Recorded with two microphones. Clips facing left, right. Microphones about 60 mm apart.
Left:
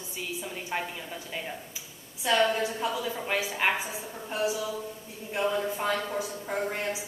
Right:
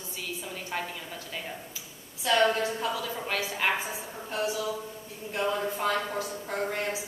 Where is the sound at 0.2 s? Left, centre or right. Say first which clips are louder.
Left 2 dB; centre.